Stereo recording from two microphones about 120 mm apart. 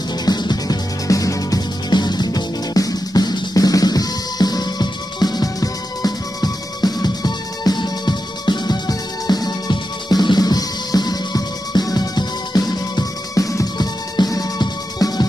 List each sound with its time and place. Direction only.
0.2 s music: 35° left (ahead or behind)